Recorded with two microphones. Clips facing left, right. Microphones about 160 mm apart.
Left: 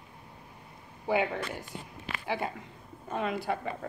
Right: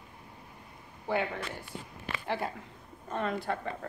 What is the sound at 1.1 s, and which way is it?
Speech, 10° left (ahead or behind).